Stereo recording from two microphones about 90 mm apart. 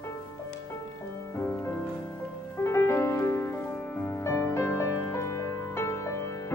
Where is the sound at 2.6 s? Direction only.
30° left (ahead or behind).